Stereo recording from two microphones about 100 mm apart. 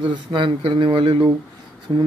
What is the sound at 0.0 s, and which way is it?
Speech, 55° right (ahead or behind).